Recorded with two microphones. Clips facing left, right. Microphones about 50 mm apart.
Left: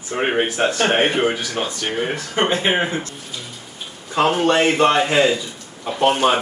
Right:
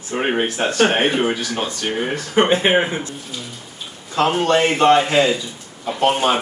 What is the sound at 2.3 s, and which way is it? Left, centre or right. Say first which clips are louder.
Speech: right 4 dB; right.